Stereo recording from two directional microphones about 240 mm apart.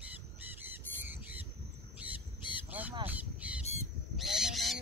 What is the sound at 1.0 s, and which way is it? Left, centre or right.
Squawk, centre.